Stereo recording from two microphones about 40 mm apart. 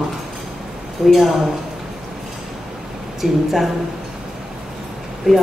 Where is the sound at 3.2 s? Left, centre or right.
Centre.